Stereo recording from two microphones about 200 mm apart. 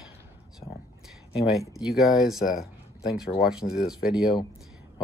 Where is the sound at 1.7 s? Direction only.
Centre (ahead or behind).